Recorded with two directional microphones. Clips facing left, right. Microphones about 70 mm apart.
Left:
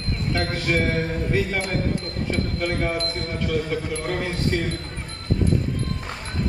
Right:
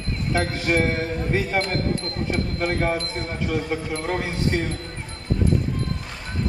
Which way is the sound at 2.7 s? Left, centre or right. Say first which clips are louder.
Right 1 dB; right.